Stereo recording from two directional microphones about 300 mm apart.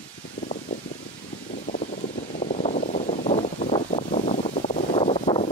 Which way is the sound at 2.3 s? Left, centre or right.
Left.